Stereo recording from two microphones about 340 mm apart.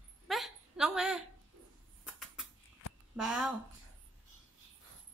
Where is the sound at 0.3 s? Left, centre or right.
Centre.